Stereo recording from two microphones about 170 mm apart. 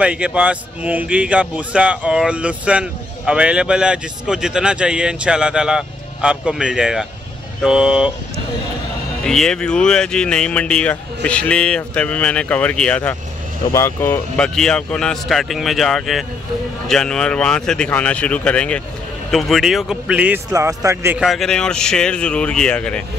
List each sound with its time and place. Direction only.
0.0 s speech: 5° right (ahead or behind)
9.2 s speech: 5° left (ahead or behind)
20.5 s speech: 15° right (ahead or behind)
21.2 s speech: centre (ahead or behind)